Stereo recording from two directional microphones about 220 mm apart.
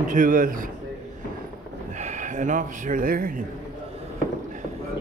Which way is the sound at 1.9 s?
35° right (ahead or behind).